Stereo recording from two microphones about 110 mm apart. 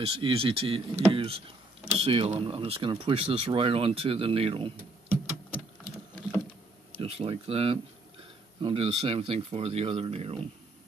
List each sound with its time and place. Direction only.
0.0 s speech: 55° right (ahead or behind)
7.0 s speech: 60° right (ahead or behind)